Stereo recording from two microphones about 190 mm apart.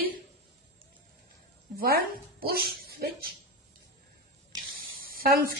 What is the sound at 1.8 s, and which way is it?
Speech, 55° right (ahead or behind).